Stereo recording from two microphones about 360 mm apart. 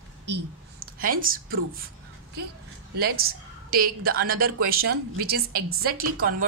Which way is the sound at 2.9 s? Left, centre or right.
Right.